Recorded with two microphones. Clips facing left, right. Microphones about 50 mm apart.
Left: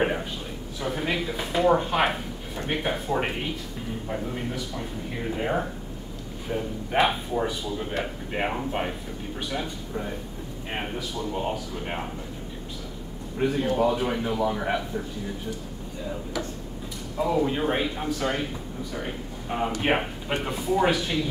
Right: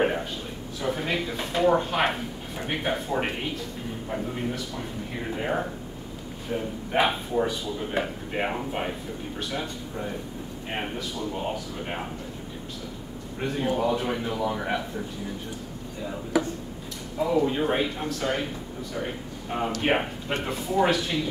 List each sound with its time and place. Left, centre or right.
0.0 s a sound: centre
0.7 s speech: centre
13.4 s speech: centre
16.3 s speech: centre
17.5 s a man's voice: centre